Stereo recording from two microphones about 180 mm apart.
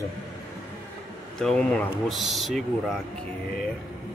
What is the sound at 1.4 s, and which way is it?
Speech, 5° left (ahead or behind).